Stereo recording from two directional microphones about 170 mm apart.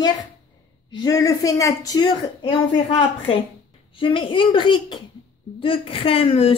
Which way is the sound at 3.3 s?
35° left (ahead or behind).